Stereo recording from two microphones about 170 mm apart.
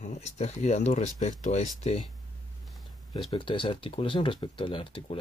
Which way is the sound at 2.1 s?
Centre (ahead or behind).